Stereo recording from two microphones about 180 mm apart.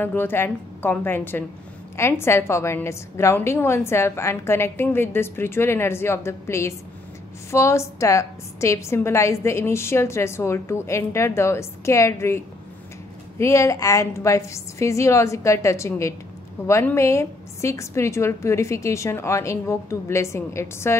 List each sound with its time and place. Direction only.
0.0 s a woman's voice: 10° left (ahead or behind)
13.4 s a woman's voice: 15° left (ahead or behind)